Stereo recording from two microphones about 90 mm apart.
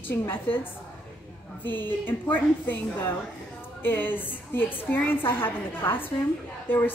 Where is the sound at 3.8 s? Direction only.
20° left (ahead or behind).